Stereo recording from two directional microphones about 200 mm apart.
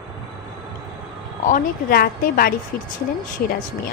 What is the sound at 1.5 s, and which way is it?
A woman's voice, 45° left (ahead or behind).